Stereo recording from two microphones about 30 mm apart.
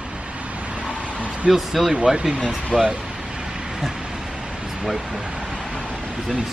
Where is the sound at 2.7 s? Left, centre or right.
Left.